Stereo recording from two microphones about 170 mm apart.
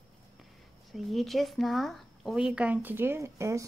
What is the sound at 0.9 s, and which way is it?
Speech, centre (ahead or behind).